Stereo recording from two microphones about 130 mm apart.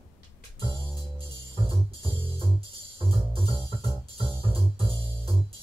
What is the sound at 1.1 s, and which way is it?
Music, 45° right (ahead or behind).